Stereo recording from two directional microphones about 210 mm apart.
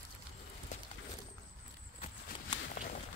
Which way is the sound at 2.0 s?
30° left (ahead or behind).